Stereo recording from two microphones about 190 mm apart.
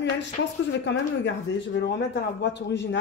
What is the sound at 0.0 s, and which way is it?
A woman's voice, 65° left (ahead or behind).